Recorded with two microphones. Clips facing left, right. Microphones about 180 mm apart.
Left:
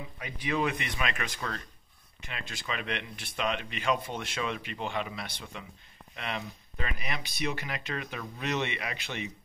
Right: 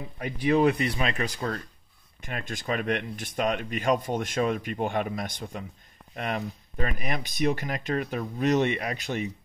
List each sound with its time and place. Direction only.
0.2 s speech: 40° right (ahead or behind)
2.2 s speech: 50° right (ahead or behind)